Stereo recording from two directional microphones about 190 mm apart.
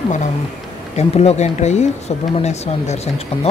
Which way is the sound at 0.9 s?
35° left (ahead or behind).